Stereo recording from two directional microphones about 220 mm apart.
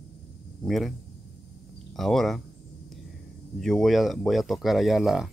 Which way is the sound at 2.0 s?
Centre (ahead or behind).